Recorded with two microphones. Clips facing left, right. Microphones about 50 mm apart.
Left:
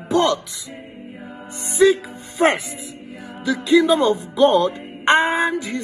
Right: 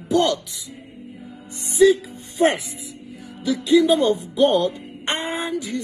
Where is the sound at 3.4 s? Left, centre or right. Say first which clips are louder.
Left 1 dB; left.